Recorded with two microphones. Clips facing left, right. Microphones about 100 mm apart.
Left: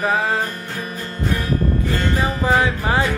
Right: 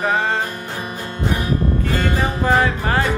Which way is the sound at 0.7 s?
20° right (ahead or behind).